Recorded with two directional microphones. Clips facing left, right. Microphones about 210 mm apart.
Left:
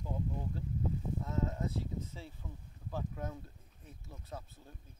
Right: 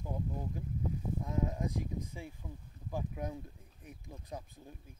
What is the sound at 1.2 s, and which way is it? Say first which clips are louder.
Speech: right 2 dB; 15° right (ahead or behind).